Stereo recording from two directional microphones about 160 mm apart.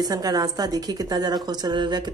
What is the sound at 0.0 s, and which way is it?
A woman's voice, 25° right (ahead or behind).